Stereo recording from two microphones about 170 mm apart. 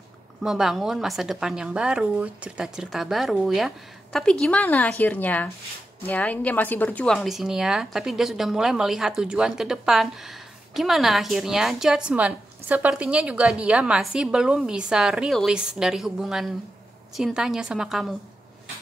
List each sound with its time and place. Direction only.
0.4 s a woman's voice: 5° right (ahead or behind)